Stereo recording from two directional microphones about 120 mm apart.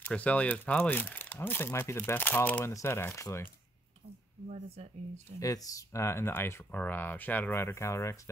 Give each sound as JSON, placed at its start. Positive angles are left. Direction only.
{"t": 0.0, "sound": "speech", "side_deg": 10}
{"t": 4.5, "sound": "speech", "side_deg": -65}
{"t": 5.4, "sound": "speech", "side_deg": 30}